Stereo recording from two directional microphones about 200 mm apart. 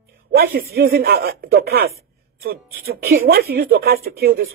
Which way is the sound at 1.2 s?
50° right (ahead or behind).